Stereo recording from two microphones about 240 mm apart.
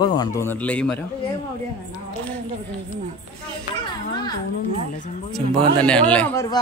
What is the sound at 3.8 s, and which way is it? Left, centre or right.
Music, centre.